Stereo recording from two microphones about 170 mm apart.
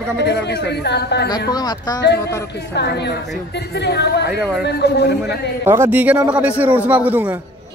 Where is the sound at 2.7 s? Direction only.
80° left.